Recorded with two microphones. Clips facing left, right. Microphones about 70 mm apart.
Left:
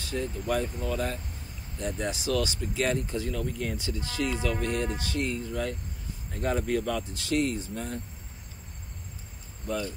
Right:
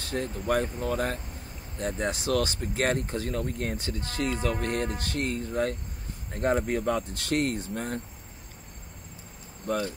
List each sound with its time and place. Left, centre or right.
0.0 s speech: right
7.1 s speech: right
9.7 s speech: right